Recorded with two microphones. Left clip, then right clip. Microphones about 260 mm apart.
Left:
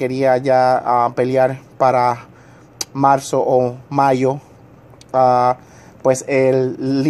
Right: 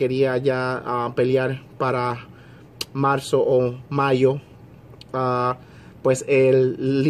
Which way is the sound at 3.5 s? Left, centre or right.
Left.